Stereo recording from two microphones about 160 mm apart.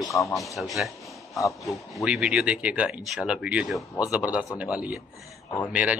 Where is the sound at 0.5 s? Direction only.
Centre (ahead or behind).